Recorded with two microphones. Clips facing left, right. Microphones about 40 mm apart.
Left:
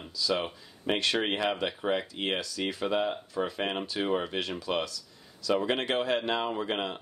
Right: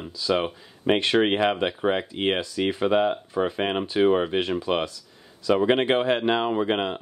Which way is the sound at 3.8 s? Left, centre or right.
Right.